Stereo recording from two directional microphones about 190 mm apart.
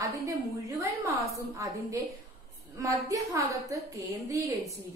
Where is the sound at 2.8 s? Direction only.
15° right (ahead or behind).